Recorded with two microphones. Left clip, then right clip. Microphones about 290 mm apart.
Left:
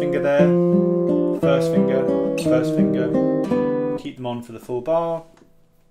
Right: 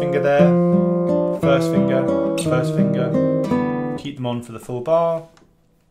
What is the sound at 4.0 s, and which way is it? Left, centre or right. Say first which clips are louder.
Speech: right 2 dB; right.